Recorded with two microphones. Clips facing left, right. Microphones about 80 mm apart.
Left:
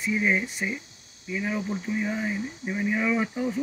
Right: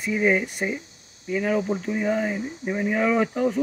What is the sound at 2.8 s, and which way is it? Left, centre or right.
Speech, right.